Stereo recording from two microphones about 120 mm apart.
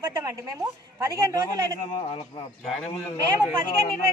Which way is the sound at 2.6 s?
Centre (ahead or behind).